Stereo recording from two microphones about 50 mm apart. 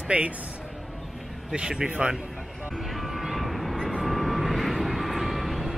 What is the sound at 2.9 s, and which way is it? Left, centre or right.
Vehicle, centre.